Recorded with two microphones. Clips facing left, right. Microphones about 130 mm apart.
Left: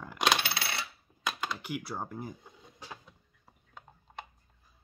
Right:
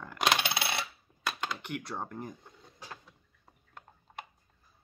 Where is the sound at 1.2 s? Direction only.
Centre (ahead or behind).